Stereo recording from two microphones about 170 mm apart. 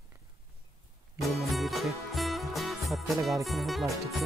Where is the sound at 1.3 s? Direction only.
Centre (ahead or behind).